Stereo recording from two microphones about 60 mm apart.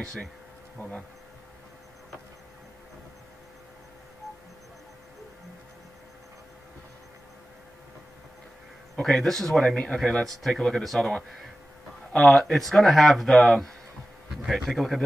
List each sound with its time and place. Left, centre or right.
0.0 s speech: centre
8.9 s speech: centre
12.2 s speech: centre